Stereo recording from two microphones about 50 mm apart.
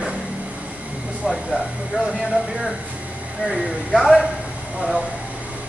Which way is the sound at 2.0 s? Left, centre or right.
Centre.